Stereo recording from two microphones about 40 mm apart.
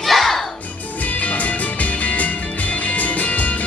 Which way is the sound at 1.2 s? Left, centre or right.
Left.